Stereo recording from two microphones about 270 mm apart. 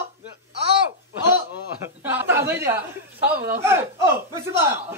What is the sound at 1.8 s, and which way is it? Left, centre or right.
A woman's voice, centre.